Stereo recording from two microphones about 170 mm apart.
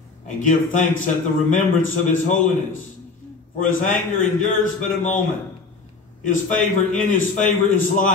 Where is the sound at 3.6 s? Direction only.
50° left (ahead or behind).